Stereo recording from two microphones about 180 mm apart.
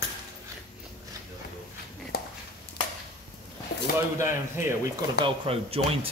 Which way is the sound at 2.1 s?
60° left (ahead or behind).